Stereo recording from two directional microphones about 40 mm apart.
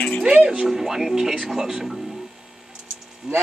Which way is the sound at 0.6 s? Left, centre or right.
Centre.